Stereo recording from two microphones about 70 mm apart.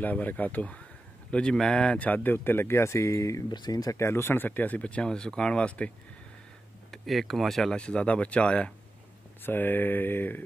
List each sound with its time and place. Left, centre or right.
0.0 s speech: left
3.5 s speech: left
3.9 s speech: left; by 5.9 s centre
6.9 s speech: centre
9.4 s speech: left